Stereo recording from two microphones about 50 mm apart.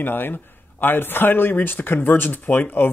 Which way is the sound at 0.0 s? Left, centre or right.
Left.